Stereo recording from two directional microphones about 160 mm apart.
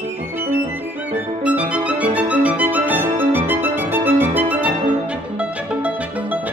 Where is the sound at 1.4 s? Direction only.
10° right (ahead or behind).